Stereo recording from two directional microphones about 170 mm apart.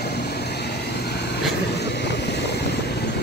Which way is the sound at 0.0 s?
75° left (ahead or behind).